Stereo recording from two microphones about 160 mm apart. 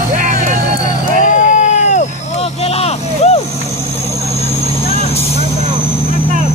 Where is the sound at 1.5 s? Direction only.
50° left (ahead or behind).